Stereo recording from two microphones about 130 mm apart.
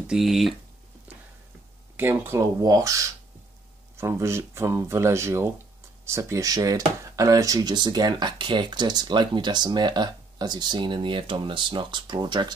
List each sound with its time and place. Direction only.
0.0 s speech: 5° right (ahead or behind)
2.0 s speech: 15° right (ahead or behind); by 12.5 s 35° right (ahead or behind)